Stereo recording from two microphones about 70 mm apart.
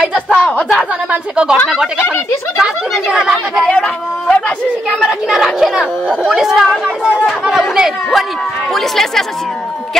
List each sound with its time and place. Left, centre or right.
0.3 s speech: left
1.1 s speech: centre
2.6 s speech: centre
3.6 s a sound: centre
5.0 s speech: centre
7.4 s chatter: centre
8.7 s speech: centre